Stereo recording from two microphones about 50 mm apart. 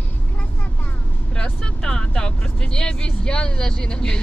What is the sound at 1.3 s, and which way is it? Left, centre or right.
Vehicle, centre.